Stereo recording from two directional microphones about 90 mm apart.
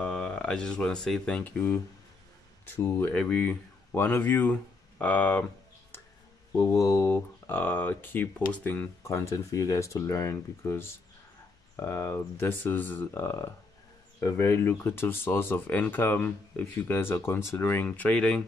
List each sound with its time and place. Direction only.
0.0 s speech: 10° left (ahead or behind)
1.4 s speech: 25° left (ahead or behind)
2.8 s speech: 25° left (ahead or behind)
3.2 s speech: 10° left (ahead or behind)
3.9 s speech: 25° left (ahead or behind)
6.5 s speech: 35° left (ahead or behind); by 8.9 s 20° left (ahead or behind)
9.0 s speech: 35° left (ahead or behind)
17.8 s speech: 15° left (ahead or behind)